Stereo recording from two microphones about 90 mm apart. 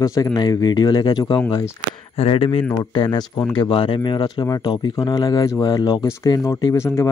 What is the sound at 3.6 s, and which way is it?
Speech, 80° left.